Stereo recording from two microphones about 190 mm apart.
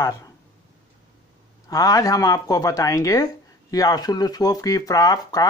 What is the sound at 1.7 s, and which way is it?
Speech, 20° left (ahead or behind).